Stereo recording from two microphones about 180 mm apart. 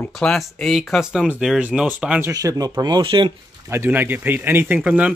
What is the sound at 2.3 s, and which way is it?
Speech, 20° right (ahead or behind).